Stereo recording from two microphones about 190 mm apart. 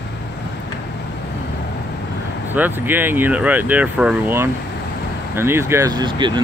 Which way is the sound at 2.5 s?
10° right (ahead or behind).